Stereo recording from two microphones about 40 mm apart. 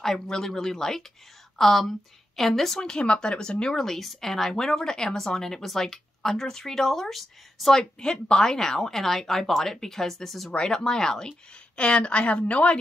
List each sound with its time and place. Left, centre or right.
0.0 s speech: centre
2.8 s a woman's voice: left
3.7 s speech: centre
7.7 s speech: centre
10.5 s a woman's voice: centre